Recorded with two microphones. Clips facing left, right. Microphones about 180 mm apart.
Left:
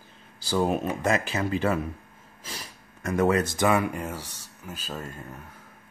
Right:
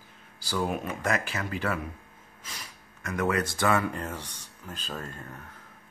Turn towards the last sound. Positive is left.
turn(degrees=10)  # may be behind; listen again after turning